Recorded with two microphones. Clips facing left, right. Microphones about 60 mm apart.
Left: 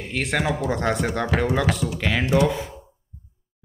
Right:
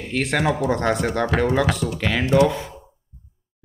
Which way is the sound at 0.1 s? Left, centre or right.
Centre.